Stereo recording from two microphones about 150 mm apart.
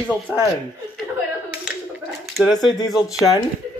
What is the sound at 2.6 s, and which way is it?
Speech, centre (ahead or behind).